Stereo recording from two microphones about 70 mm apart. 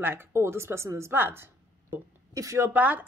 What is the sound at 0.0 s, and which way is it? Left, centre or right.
A woman's voice, right.